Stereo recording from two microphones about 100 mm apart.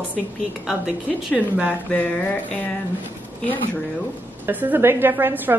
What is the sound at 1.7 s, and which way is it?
A woman's voice, 15° left (ahead or behind).